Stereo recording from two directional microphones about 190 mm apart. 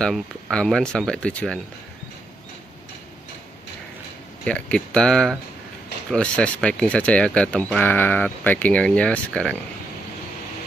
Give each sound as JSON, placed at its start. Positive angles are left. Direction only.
{"t": 0.0, "sound": "speech", "side_deg": 5}
{"t": 4.5, "sound": "speech", "side_deg": 5}